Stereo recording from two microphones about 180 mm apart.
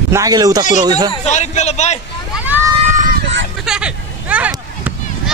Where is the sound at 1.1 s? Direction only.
40° left (ahead or behind).